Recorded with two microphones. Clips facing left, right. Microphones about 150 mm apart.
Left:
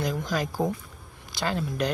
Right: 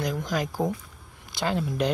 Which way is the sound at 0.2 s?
15° right (ahead or behind).